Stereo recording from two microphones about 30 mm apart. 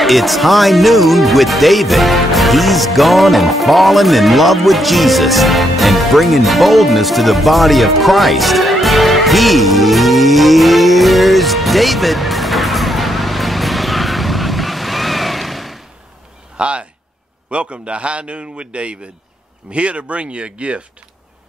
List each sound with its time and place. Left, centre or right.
0.0 s speech: centre
16.5 s a sound: right
17.5 s a man's voice: right